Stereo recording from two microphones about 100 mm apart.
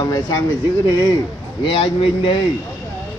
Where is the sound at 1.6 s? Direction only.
65° left (ahead or behind).